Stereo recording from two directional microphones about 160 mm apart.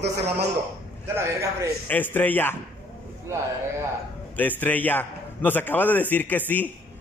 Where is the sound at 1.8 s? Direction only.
10° left (ahead or behind).